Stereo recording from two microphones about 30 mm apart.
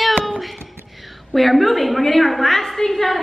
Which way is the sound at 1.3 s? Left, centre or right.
Centre.